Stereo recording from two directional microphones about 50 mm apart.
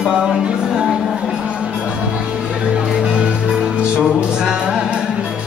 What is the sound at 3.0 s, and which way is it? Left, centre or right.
Music, centre.